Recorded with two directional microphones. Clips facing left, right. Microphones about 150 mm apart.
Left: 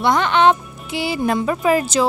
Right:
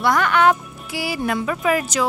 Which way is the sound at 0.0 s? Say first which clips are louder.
Left 2 dB; 25° left (ahead or behind).